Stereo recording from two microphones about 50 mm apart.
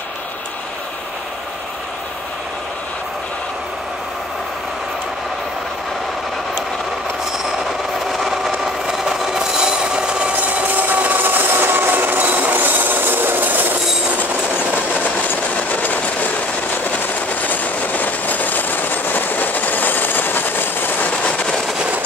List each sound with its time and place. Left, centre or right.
8.1 s a sound: centre
10.8 s train: right
15.2 s train: left